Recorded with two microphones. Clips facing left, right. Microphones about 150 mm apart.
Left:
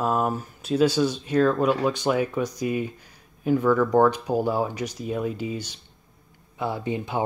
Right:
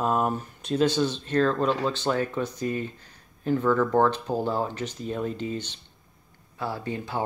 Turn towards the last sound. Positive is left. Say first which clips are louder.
# left 3 dB
turn(degrees=20)  # may be behind; listen again after turning